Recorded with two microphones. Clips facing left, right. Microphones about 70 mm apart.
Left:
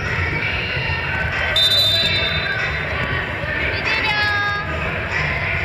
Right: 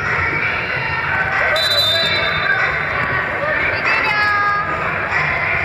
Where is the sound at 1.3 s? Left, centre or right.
Right.